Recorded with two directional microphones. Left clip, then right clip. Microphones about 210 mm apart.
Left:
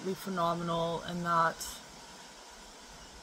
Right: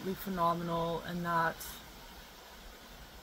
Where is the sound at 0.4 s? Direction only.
Centre (ahead or behind).